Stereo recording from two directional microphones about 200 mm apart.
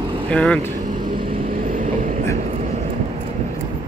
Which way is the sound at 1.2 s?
45° right (ahead or behind).